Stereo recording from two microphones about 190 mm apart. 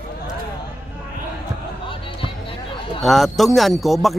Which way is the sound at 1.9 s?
25° left (ahead or behind).